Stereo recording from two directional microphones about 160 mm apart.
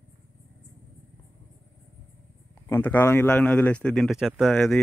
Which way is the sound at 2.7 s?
10° left (ahead or behind).